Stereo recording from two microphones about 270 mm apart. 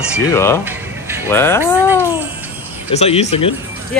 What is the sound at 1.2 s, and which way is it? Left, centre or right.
Speech, centre.